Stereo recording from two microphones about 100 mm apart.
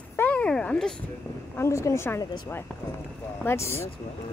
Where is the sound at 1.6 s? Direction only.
30° left (ahead or behind).